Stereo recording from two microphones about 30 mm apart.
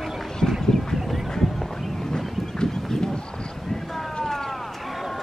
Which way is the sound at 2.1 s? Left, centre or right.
Centre.